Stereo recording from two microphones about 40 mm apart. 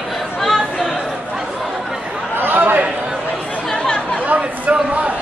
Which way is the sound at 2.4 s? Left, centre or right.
Right.